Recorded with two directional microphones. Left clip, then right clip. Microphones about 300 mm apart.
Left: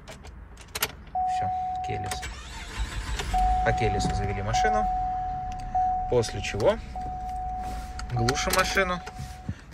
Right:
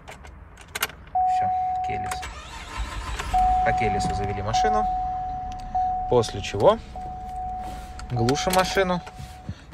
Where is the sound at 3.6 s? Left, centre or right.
Centre.